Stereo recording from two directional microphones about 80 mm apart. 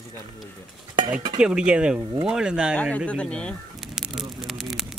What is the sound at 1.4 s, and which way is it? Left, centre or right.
Speech, centre.